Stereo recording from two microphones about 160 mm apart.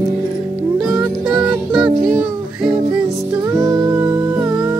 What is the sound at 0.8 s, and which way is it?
Music, 5° right (ahead or behind).